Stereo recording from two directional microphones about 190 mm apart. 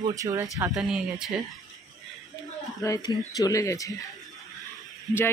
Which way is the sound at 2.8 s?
20° left (ahead or behind).